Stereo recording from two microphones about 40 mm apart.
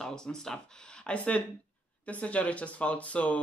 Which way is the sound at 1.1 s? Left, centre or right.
Left.